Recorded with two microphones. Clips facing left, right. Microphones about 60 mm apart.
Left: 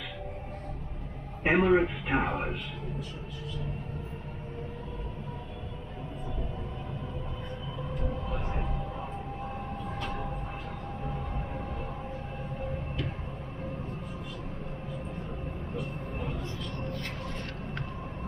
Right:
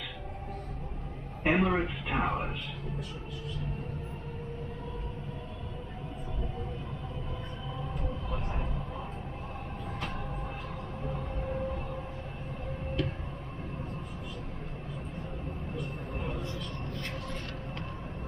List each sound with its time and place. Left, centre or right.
1.4 s speech: left